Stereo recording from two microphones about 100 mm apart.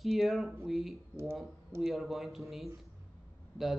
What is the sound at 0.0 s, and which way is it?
A man's voice, centre (ahead or behind).